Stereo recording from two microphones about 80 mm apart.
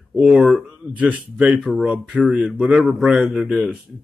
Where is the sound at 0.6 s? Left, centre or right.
Centre.